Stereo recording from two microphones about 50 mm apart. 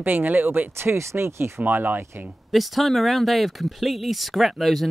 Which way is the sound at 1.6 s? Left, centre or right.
Right.